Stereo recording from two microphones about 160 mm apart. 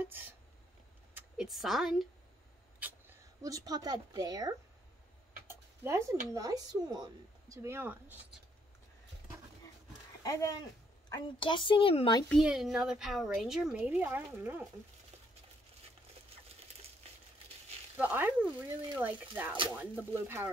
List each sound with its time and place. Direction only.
0.0 s a sound: 10° right (ahead or behind)
1.1 s a woman's voice: 5° right (ahead or behind)
2.8 s a woman's voice: 20° right (ahead or behind)
5.5 s a sound: 20° right (ahead or behind)
6.3 s speech: 25° right (ahead or behind)
10.2 s speech: 20° left (ahead or behind)
11.1 s a woman's voice: 30° left (ahead or behind)
12.3 s a woman's voice: centre (ahead or behind)
17.9 s speech: 10° right (ahead or behind)